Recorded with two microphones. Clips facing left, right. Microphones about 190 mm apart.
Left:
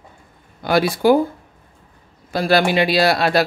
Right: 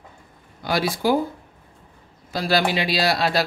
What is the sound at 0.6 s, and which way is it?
Speech, 55° left (ahead or behind).